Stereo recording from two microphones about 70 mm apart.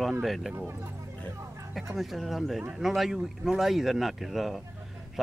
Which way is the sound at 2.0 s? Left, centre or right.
Centre.